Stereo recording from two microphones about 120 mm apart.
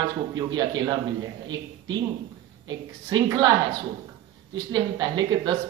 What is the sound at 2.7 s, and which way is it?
Speech, 40° right (ahead or behind).